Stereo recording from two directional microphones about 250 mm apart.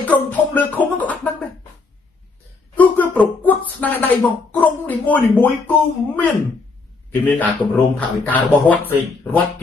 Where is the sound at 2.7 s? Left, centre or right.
Centre.